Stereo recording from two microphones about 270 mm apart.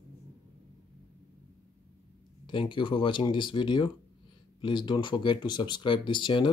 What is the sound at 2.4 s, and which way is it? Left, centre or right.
Speech, centre.